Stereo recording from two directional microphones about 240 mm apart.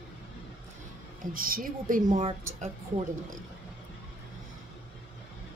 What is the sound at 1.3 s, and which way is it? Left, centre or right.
A woman's voice, right.